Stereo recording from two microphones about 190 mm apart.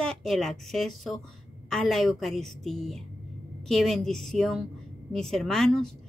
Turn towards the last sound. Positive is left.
turn(degrees=5)  # may be behind; listen again after turning